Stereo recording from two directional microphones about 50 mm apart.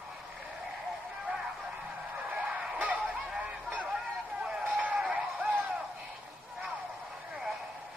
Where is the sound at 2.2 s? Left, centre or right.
Right.